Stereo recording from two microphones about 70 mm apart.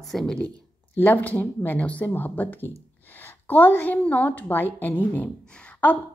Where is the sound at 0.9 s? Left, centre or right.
Left.